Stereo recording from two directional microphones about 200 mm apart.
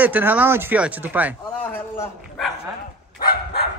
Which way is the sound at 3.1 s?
50° left (ahead or behind).